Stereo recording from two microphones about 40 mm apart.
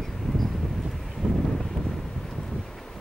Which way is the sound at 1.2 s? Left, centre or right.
Centre.